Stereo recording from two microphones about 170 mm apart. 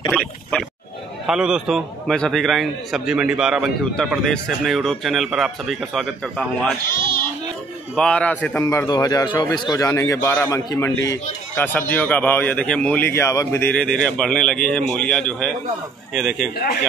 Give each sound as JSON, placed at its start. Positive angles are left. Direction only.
{"t": 0.1, "sound": "a sound", "side_deg": 0}
{"t": 1.2, "sound": "a man's voice", "side_deg": -5}
{"t": 7.9, "sound": "a man's voice", "side_deg": 5}
{"t": 16.5, "sound": "speech", "side_deg": 70}